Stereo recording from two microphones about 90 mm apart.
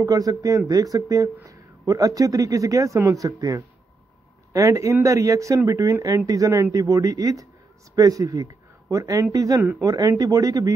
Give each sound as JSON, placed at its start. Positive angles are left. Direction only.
{"t": 0.0, "sound": "speech", "side_deg": -45}
{"t": 9.8, "sound": "speech", "side_deg": -45}